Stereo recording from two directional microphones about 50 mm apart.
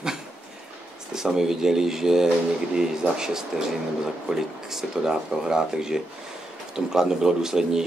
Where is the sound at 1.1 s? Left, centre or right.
Centre.